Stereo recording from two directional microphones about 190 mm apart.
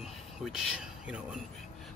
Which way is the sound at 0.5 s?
5° right (ahead or behind).